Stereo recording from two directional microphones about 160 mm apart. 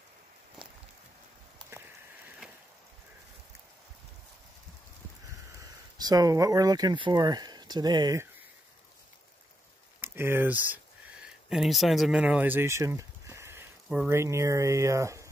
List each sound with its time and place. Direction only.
5.6 s speech: 25° right (ahead or behind)
10.0 s speech: 15° right (ahead or behind)